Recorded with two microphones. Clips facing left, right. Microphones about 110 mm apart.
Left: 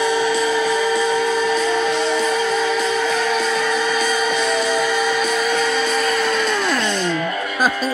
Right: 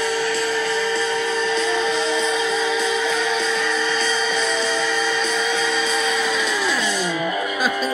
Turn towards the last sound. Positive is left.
turn(degrees=0)  # may be behind; listen again after turning